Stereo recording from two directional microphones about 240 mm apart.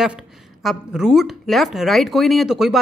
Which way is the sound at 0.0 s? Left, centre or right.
Centre.